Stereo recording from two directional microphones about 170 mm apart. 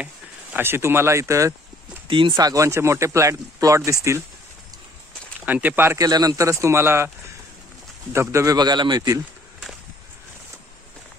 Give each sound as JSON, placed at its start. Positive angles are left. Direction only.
{"t": 0.0, "sound": "speech", "side_deg": -10}
{"t": 2.0, "sound": "speech", "side_deg": -30}
{"t": 5.4, "sound": "speech", "side_deg": -10}
{"t": 8.1, "sound": "speech", "side_deg": -15}